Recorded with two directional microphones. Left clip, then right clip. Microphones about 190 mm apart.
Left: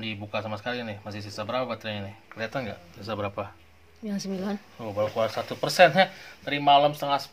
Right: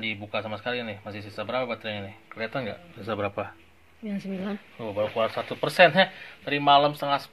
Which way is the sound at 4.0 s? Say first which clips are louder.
Left 1 dB; centre (ahead or behind).